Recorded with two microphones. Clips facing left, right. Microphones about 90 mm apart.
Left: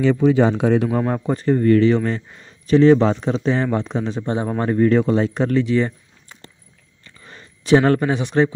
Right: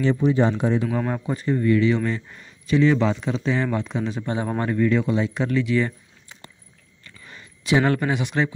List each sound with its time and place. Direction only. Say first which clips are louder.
0.1 s speech: left 4 dB; 90° left
0.9 s speech: left 5 dB; 40° left (ahead or behind)
4.8 s speech: left 6 dB; 45° left (ahead or behind)
7.2 s speech: left 2 dB; 35° left (ahead or behind)